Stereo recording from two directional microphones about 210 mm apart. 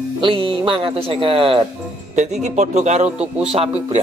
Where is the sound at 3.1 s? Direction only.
30° right (ahead or behind).